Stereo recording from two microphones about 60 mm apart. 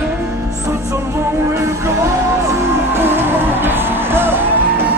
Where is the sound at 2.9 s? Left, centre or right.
Right.